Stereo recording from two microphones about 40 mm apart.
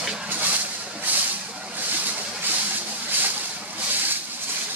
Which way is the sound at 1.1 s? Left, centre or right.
Right.